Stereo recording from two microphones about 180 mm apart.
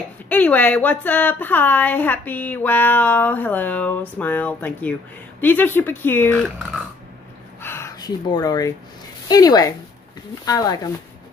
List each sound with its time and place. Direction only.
0.3 s a woman's voice: 10° left (ahead or behind)
7.6 s a sound: 15° left (ahead or behind)
9.3 s speech: 20° left (ahead or behind)